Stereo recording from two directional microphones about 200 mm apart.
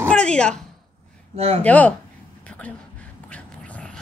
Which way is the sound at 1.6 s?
5° left (ahead or behind).